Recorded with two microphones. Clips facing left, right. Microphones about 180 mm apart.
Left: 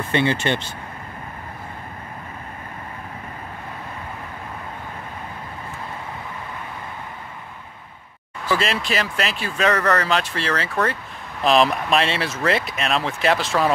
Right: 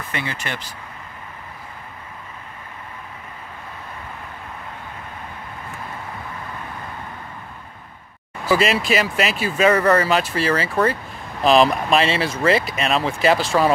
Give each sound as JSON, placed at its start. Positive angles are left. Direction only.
{"t": 0.1, "sound": "speech", "side_deg": 30}
{"t": 8.5, "sound": "speech", "side_deg": -5}